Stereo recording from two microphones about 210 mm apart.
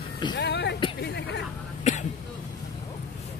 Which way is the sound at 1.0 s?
55° left (ahead or behind).